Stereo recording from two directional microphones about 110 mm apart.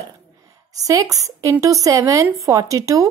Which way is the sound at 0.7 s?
30° right (ahead or behind).